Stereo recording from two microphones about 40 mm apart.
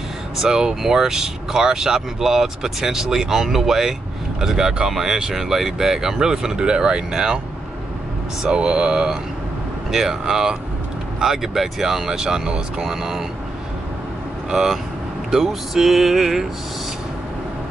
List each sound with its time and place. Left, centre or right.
0.4 s speech: centre
8.4 s speech: centre
14.5 s speech: centre